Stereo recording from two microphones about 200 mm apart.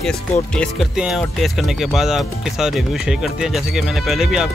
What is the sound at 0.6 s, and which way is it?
Speech, centre (ahead or behind).